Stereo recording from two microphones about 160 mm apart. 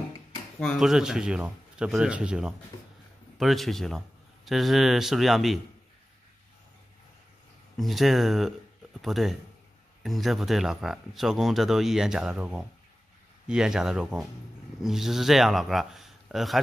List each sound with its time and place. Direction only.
0.6 s speech: centre (ahead or behind)
7.7 s speech: centre (ahead or behind)